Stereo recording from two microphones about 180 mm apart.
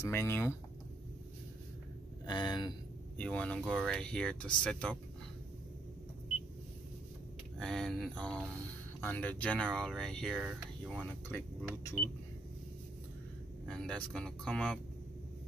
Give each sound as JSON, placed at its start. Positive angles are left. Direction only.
{"t": 0.0, "sound": "speech", "side_deg": 15}
{"t": 2.2, "sound": "speech", "side_deg": 25}
{"t": 3.2, "sound": "speech", "side_deg": 5}
{"t": 7.5, "sound": "speech", "side_deg": 5}
{"t": 13.7, "sound": "speech", "side_deg": 5}